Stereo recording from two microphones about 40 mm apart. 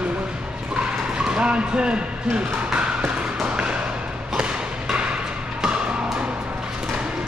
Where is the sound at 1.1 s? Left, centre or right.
Right.